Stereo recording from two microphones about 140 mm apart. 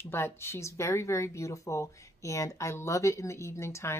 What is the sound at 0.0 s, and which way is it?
Speech, 15° left (ahead or behind).